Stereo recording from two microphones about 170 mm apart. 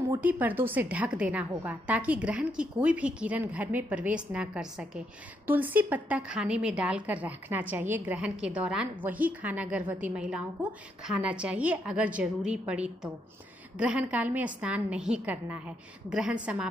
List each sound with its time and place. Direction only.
0.1 s a woman's voice: 10° right (ahead or behind)